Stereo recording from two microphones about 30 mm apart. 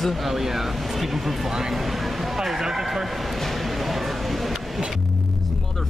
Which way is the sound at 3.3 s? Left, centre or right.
Centre.